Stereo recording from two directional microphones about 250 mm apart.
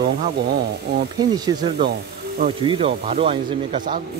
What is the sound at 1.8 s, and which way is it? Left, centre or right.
Speech, right.